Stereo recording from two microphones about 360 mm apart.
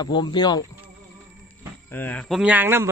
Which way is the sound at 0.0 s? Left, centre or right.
Centre.